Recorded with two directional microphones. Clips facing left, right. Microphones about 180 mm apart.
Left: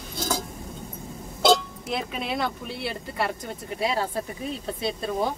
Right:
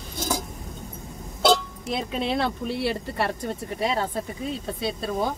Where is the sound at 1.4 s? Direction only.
5° left (ahead or behind).